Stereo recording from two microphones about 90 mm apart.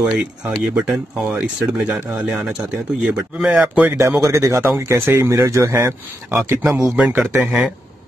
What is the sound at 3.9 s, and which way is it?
Speech, 35° right (ahead or behind).